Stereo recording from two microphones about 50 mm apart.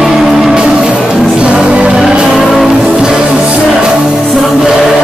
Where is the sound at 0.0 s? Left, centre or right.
Centre.